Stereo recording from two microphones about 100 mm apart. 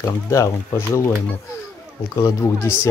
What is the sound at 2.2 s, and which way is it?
Speech, 35° left (ahead or behind).